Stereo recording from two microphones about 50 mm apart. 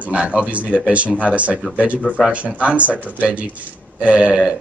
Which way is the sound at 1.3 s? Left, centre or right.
Right.